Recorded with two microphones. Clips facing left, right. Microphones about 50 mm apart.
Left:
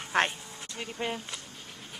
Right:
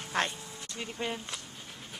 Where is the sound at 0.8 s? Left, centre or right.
Centre.